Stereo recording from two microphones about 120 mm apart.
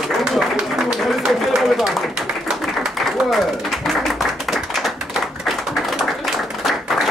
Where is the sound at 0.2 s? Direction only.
Centre (ahead or behind).